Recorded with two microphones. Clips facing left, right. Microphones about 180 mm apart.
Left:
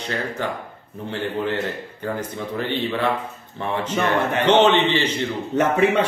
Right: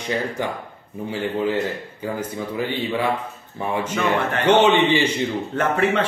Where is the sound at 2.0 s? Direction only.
10° right (ahead or behind).